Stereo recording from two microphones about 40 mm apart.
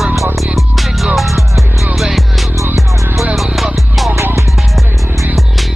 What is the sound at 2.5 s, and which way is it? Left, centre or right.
Music, right.